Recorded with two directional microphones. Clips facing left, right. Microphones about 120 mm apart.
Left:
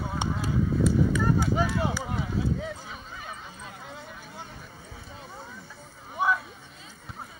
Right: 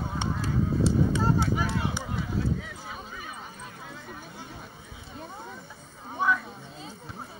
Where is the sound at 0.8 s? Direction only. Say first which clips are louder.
Even; 30° right (ahead or behind).